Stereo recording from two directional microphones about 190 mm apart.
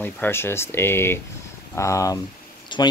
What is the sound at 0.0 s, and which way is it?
Speech, 10° left (ahead or behind).